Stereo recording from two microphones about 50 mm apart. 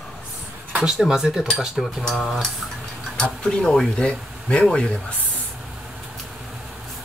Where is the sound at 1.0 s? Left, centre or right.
Centre.